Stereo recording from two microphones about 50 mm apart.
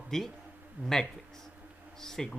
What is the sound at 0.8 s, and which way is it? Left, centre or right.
Speech, right.